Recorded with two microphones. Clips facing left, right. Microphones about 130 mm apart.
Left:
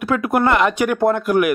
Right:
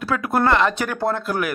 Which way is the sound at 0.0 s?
15° left (ahead or behind).